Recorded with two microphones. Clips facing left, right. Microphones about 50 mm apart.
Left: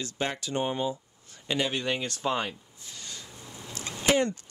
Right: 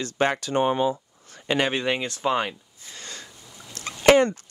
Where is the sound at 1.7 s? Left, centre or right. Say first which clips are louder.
Right 5 dB; right.